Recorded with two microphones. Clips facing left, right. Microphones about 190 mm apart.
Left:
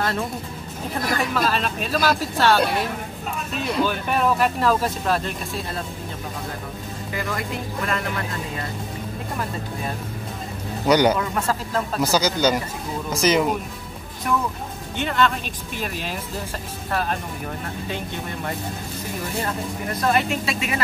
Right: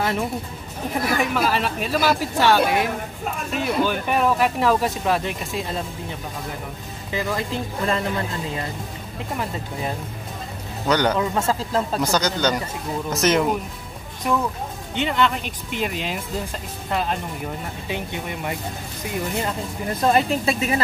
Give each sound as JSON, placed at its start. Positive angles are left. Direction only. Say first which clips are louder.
{"t": 0.0, "sound": "speech", "louder": "right 2 dB", "side_deg": -15}
{"t": 7.1, "sound": "speech", "louder": "right 3 dB", "side_deg": -25}
{"t": 10.9, "sound": "a man's voice", "louder": "left 3 dB", "side_deg": 10}
{"t": 11.1, "sound": "speech", "louder": "right 2 dB", "side_deg": -25}
{"t": 12.0, "sound": "speech", "louder": "left 5 dB", "side_deg": 5}
{"t": 15.0, "sound": "speech", "louder": "right 1 dB", "side_deg": -15}
{"t": 20.0, "sound": "a woman's voice", "louder": "right 3 dB", "side_deg": -30}